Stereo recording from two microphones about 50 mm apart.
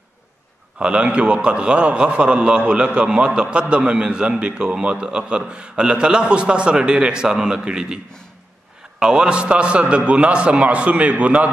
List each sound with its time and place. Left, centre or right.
0.7 s a man's voice: right
9.0 s a man's voice: centre